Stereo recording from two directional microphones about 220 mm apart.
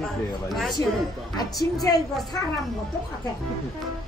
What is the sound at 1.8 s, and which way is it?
Speech, 15° left (ahead or behind).